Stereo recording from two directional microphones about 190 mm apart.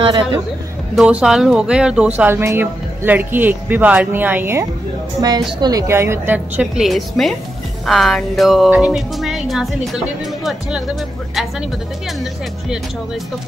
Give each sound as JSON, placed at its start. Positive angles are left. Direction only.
{"t": 0.0, "sound": "speech", "side_deg": -25}
{"t": 0.9, "sound": "speech", "side_deg": -5}